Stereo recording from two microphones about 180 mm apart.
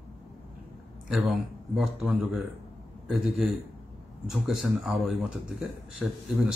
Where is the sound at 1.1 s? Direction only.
Centre (ahead or behind).